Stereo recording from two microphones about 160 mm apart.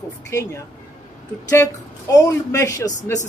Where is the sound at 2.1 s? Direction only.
20° left (ahead or behind).